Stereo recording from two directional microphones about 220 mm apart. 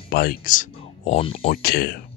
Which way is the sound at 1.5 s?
45° left (ahead or behind).